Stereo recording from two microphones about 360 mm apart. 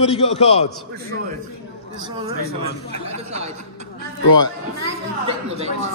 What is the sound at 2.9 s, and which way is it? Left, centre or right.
Speech, centre.